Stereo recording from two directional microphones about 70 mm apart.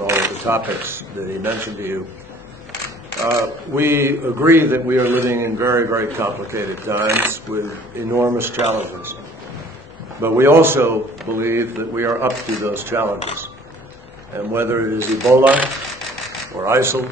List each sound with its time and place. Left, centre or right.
0.0 s a sound: right
0.7 s a man's voice: right
3.3 s a man's voice: right
10.2 s a man's voice: right
14.5 s a man's voice: right
15.4 s speech: right
16.6 s a man's voice: right